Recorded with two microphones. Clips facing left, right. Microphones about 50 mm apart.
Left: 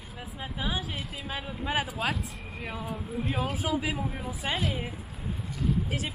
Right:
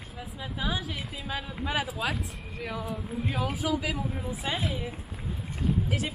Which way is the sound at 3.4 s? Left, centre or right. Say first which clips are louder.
Right 1 dB; left.